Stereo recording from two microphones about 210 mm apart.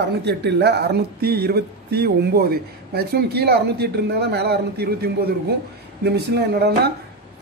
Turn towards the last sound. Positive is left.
turn(degrees=-50)  # may be behind; listen again after turning